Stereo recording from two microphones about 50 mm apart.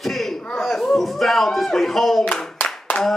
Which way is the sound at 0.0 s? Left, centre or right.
Centre.